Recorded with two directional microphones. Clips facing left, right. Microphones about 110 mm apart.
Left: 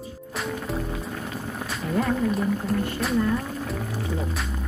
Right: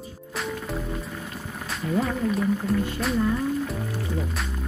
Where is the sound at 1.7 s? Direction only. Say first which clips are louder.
Even; centre (ahead or behind).